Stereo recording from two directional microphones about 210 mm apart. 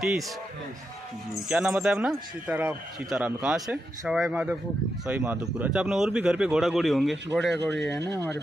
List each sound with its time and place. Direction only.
0.0 s speech: centre (ahead or behind)
1.3 s speech: 5° right (ahead or behind)
7.5 s speech: 55° right (ahead or behind)